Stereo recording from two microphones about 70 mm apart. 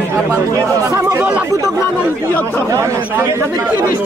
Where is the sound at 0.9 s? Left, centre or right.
Right.